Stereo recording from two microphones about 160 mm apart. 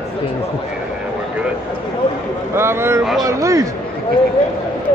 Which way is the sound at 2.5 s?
15° right (ahead or behind).